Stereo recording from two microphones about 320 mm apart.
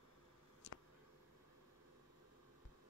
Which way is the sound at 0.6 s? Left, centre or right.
Left.